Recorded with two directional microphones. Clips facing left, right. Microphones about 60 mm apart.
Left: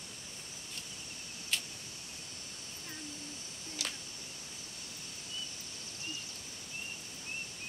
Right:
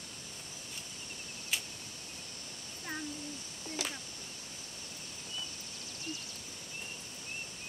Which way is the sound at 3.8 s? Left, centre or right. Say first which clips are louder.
Right 2 dB; right.